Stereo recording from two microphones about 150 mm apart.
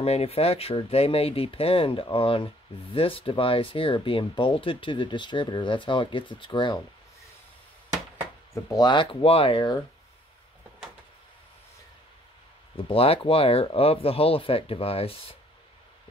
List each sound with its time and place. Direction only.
0.0 s speech: 40° left (ahead or behind)
8.5 s speech: 25° left (ahead or behind)
12.7 s speech: 40° left (ahead or behind)